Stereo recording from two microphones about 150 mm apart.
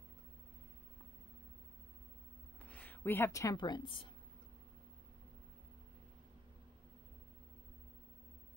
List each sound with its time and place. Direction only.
2.6 s a woman's voice: 10° left (ahead or behind); by 4.1 s 35° left (ahead or behind)